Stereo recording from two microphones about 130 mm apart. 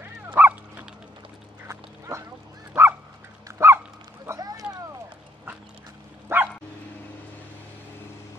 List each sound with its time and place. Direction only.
0.0 s dog: 15° right (ahead or behind)
1.7 s duck: 20° right (ahead or behind)
2.7 s dog: 20° right (ahead or behind)
4.3 s boat: 30° right (ahead or behind)
6.2 s bow-wow: 15° right (ahead or behind)